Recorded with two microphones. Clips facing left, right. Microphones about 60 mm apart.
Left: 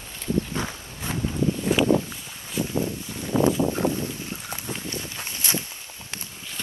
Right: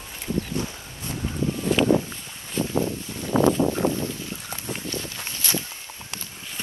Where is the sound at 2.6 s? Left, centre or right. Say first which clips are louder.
Right 2 dB; right.